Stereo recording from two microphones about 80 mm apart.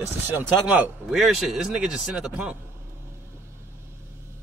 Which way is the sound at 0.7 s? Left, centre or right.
Centre.